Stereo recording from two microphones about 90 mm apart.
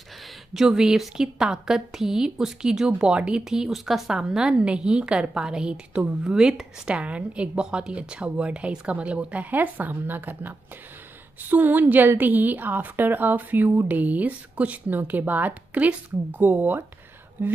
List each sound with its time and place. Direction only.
0.6 s a woman's voice: 5° right (ahead or behind); by 16.8 s 20° right (ahead or behind)